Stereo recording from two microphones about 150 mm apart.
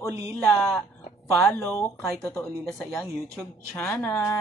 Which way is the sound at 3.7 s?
10° left (ahead or behind).